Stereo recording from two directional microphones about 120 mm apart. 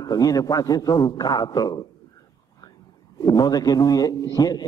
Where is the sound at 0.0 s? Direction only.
30° left (ahead or behind).